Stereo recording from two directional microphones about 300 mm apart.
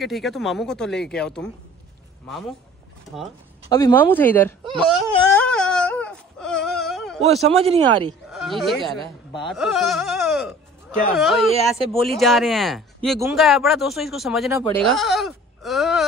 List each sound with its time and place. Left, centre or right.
0.0 s speech: centre
3.6 s speech: centre
5.3 s a sound: centre
7.4 s speech: centre
8.1 s speech: centre